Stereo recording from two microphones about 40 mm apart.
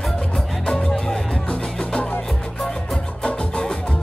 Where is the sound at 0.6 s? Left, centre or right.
Centre.